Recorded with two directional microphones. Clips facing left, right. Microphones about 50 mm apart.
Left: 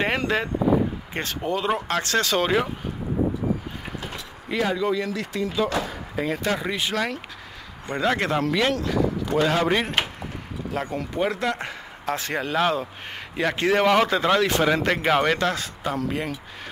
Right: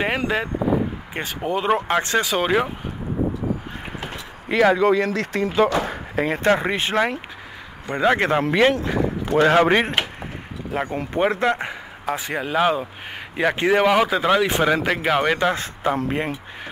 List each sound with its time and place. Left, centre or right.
0.0 s speech: centre
1.6 s speech: right
4.5 s speech: right
12.1 s speech: centre
15.5 s speech: right